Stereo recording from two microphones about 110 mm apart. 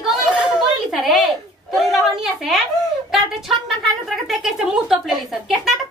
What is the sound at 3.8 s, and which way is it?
Speech, centre (ahead or behind).